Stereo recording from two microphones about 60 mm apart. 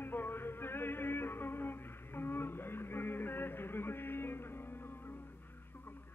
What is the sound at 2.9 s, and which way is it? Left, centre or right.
Music, left.